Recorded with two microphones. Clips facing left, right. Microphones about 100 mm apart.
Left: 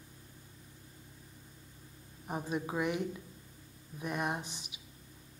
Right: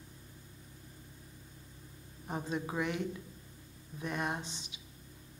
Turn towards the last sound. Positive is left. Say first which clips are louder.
# right 1 dB
turn(degrees=-25)  # may be behind; listen again after turning